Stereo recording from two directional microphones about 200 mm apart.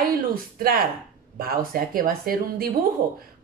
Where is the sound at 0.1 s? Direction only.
45° right (ahead or behind).